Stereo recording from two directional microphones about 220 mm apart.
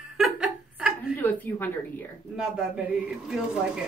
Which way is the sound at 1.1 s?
10° left (ahead or behind).